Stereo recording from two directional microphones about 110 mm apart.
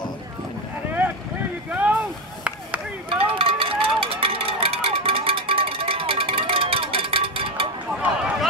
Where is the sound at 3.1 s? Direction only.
55° right (ahead or behind).